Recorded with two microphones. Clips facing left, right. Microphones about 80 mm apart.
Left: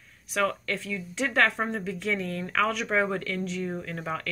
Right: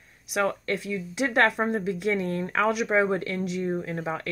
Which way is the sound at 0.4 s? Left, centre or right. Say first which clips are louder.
Right 2 dB; right.